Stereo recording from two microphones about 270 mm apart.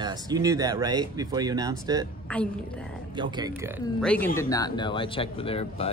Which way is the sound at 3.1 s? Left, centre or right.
Centre.